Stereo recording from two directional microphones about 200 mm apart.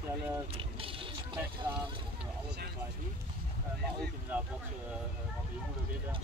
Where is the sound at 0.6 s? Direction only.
25° right (ahead or behind).